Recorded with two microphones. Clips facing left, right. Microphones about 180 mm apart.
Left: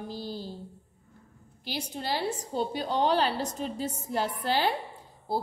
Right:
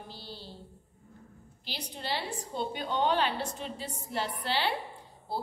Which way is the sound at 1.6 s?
50° left (ahead or behind).